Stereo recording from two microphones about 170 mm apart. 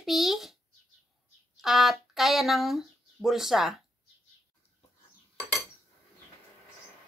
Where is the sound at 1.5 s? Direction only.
Centre (ahead or behind).